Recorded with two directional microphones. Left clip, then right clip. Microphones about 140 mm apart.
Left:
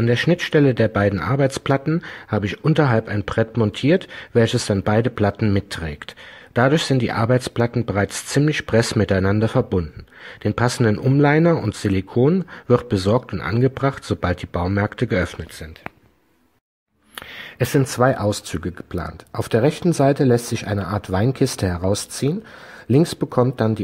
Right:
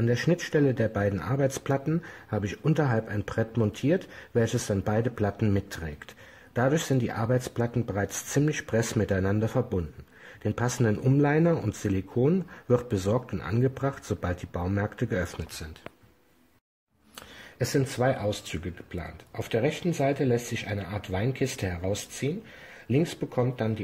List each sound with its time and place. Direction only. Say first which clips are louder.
0.0 s speech: left 8 dB; 15° left (ahead or behind)
11.2 s speech: left 10 dB; 15° left (ahead or behind)
17.6 s speech: left 9 dB; 25° left (ahead or behind)
18.2 s speech: left 8 dB; 45° left (ahead or behind)
22.8 s speech: left 9 dB; 40° left (ahead or behind)